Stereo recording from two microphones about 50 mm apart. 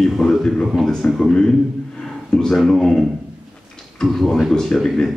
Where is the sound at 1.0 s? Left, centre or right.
Left.